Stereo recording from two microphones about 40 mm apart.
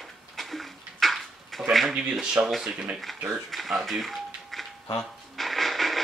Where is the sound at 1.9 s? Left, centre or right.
Right.